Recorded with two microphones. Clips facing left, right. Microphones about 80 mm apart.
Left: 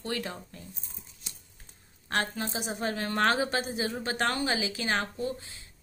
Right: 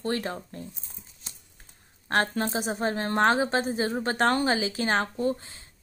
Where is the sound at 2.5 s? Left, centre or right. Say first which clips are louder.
Right 5 dB; right.